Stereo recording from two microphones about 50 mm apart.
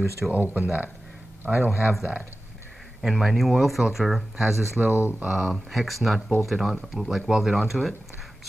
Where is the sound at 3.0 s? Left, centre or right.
Centre.